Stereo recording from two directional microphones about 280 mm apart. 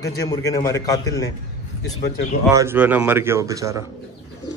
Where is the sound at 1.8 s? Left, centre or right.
Left.